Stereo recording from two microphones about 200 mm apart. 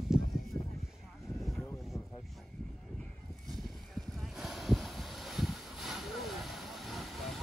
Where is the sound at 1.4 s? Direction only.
5° left (ahead or behind).